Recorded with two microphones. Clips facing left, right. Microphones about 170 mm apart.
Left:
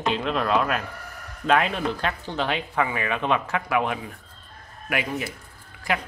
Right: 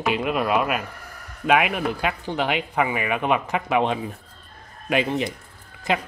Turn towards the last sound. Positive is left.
turn(degrees=-20)  # may be behind; listen again after turning